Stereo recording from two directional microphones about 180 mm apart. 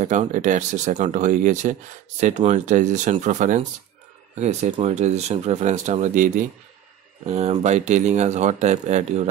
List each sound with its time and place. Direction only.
0.0 s speech: 45° right (ahead or behind)